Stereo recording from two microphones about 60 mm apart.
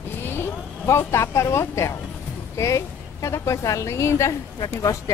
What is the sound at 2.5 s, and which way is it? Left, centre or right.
A woman's voice, left.